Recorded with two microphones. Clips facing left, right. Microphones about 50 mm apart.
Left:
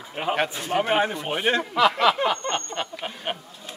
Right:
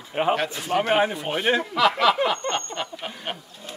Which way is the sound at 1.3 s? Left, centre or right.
Centre.